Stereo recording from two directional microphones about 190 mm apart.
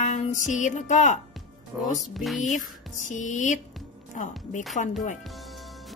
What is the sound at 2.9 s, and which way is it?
Speech, 40° left (ahead or behind).